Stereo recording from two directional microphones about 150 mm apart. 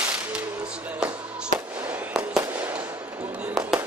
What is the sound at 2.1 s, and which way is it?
Fireworks, 5° right (ahead or behind).